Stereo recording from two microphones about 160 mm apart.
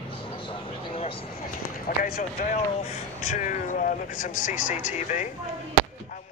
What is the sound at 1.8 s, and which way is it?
Run, 70° left (ahead or behind).